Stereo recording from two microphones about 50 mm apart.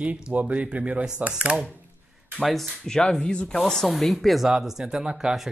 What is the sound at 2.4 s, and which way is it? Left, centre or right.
Speech, centre.